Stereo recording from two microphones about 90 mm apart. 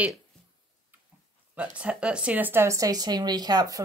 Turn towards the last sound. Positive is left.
turn(degrees=-50)  # may be behind; listen again after turning